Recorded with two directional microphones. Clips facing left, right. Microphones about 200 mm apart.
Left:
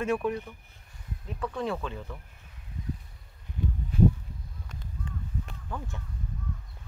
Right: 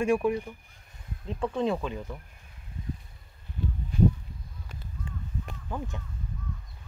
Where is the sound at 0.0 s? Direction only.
10° right (ahead or behind).